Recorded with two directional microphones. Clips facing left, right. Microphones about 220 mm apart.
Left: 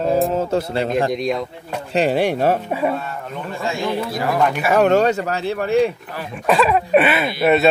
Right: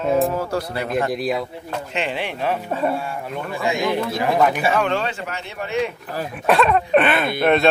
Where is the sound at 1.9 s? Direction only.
40° left (ahead or behind).